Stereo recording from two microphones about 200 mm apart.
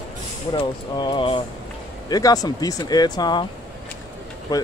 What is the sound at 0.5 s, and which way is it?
Speech, 25° left (ahead or behind).